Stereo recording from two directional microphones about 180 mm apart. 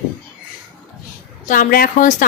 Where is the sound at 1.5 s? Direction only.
50° left (ahead or behind).